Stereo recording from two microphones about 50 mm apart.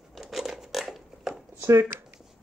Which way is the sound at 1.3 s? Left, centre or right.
Right.